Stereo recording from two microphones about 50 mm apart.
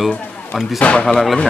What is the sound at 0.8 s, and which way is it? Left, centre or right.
Speech, left.